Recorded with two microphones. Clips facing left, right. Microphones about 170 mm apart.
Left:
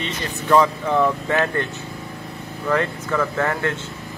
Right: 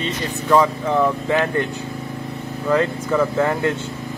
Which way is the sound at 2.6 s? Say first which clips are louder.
Right 3 dB; 10° right (ahead or behind).